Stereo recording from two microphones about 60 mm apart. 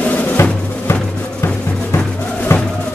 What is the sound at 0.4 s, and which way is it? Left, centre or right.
Music, left.